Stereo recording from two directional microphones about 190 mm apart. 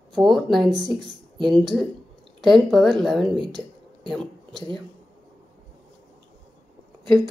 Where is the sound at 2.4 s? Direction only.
Centre (ahead or behind).